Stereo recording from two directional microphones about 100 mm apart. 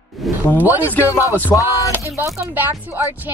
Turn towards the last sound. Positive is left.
turn(degrees=-20)  # may be behind; listen again after turning